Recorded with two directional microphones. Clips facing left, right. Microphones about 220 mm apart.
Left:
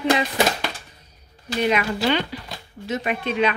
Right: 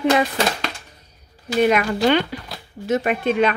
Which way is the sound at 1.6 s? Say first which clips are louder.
Right 4 dB; 50° right (ahead or behind).